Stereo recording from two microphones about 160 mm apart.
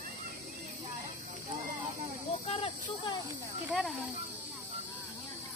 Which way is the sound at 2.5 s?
35° left (ahead or behind).